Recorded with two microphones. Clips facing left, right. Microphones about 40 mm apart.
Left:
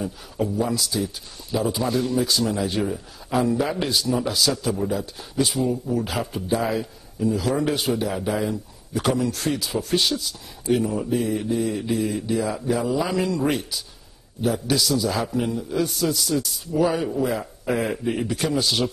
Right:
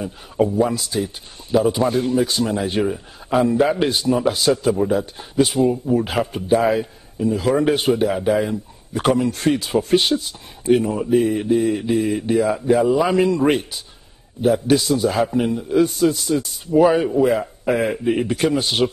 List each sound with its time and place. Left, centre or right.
0.0 s speech: right
18.2 s speech: right